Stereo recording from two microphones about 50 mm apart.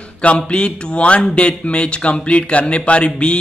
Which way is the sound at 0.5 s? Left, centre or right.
Left.